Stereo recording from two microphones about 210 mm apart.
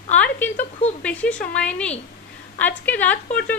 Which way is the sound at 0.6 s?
30° left (ahead or behind).